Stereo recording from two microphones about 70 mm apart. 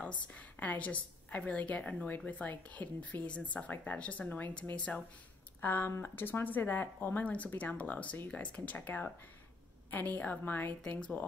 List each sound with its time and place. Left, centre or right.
0.0 s a woman's voice: left
5.6 s a woman's voice: left